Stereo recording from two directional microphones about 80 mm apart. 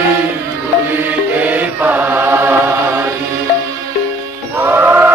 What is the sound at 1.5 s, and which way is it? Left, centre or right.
Chant, right.